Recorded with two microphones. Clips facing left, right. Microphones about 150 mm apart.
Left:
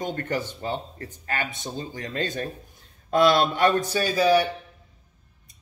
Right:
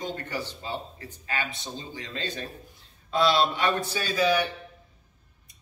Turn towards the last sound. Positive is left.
turn(degrees=35)  # may be behind; listen again after turning